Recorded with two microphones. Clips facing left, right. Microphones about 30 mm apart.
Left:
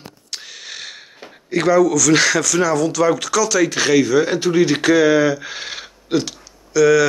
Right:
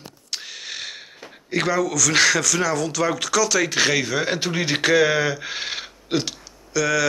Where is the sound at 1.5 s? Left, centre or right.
Centre.